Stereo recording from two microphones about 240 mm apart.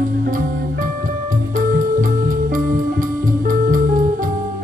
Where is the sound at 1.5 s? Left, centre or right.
Right.